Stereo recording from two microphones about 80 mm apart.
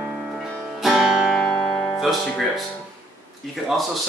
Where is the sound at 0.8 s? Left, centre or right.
Centre.